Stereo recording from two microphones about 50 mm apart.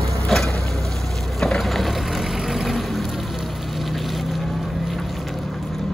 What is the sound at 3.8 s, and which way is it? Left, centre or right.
Boat, centre.